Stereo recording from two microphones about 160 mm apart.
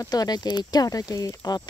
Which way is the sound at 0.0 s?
25° left (ahead or behind).